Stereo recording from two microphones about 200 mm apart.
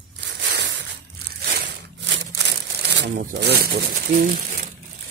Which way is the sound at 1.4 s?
50° right (ahead or behind).